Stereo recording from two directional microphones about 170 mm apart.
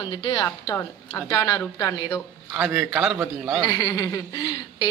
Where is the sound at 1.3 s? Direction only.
20° left (ahead or behind).